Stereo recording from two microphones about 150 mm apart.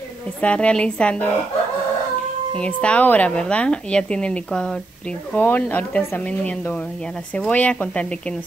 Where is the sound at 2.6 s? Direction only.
10° left (ahead or behind).